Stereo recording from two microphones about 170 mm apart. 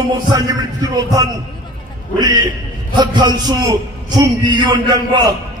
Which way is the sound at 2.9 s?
25° right (ahead or behind).